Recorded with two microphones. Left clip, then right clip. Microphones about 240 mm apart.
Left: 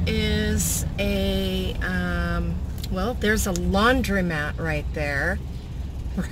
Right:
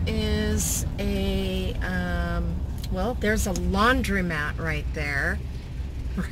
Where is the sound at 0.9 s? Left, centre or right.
Centre.